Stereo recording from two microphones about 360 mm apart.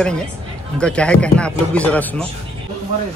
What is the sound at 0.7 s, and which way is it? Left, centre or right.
Speech, centre.